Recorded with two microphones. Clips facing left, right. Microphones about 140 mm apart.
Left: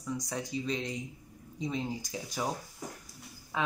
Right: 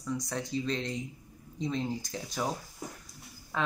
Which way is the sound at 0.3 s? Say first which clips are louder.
Right 1 dB; 10° left (ahead or behind).